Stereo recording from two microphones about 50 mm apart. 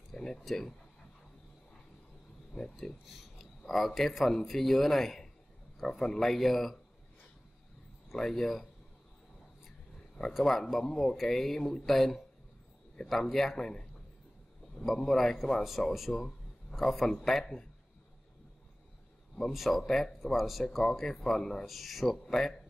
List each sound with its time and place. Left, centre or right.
0.1 s speech: centre
2.7 s speech: centre
8.2 s speech: centre
9.7 s a sound: centre
10.3 s speech: centre
15.0 s speech: centre
16.1 s speech: centre
19.5 s speech: centre
20.6 s speech: centre
21.6 s speech: centre